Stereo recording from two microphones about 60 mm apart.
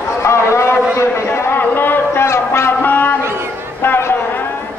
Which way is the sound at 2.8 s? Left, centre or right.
Left.